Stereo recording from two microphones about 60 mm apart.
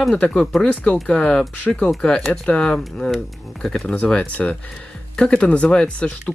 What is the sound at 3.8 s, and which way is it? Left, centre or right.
Speech, left.